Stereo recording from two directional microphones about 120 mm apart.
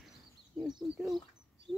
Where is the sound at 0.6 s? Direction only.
Centre (ahead or behind).